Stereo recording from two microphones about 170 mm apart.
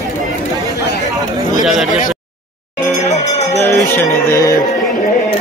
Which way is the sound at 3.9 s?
15° left (ahead or behind).